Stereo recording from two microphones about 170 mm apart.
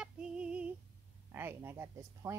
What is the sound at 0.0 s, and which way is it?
Female singing, 5° right (ahead or behind).